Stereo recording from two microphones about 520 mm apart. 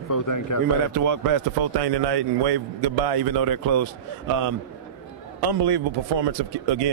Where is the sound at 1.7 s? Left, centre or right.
Right.